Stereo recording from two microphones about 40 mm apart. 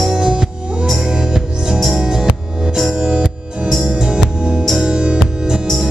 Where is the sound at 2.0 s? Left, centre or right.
Centre.